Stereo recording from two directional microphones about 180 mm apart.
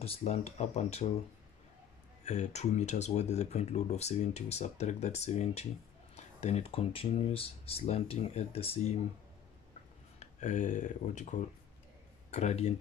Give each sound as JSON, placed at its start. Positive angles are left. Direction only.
{"t": 0.0, "sound": "speech", "side_deg": 35}
{"t": 2.2, "sound": "speech", "side_deg": 40}
{"t": 10.1, "sound": "speech", "side_deg": 40}